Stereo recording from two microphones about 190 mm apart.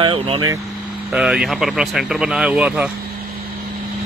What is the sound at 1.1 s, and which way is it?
Speech, 5° right (ahead or behind).